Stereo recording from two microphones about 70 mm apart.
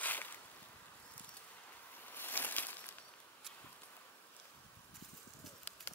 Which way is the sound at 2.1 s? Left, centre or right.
Left.